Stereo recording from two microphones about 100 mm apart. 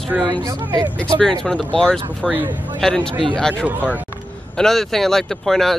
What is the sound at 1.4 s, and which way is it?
Speech, 10° left (ahead or behind).